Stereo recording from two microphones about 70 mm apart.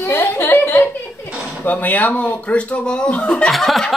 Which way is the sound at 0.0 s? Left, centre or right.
Left.